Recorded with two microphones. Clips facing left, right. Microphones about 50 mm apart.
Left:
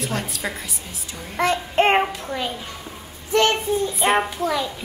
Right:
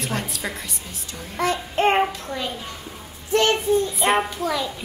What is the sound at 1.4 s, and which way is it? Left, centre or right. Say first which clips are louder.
Child singing: left 3 dB; left.